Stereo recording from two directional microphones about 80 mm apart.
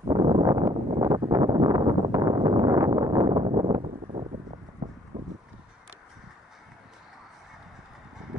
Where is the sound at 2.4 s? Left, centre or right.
Right.